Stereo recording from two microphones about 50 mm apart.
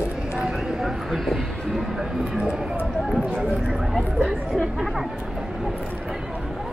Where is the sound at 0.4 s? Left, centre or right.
Centre.